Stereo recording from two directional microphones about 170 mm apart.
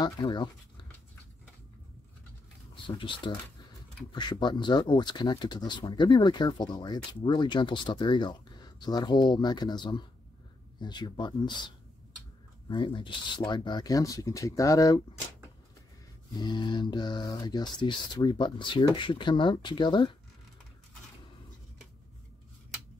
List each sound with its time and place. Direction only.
0.0 s speech: 25° left (ahead or behind)
3.0 s speech: 30° left (ahead or behind)
16.3 s speech: 25° left (ahead or behind)